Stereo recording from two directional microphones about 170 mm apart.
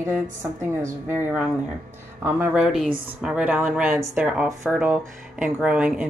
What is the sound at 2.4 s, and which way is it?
Speech, 5° right (ahead or behind).